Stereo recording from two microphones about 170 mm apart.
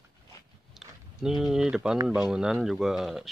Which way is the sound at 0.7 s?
Centre (ahead or behind).